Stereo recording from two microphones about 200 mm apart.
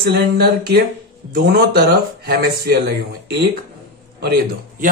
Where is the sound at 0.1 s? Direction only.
50° right (ahead or behind).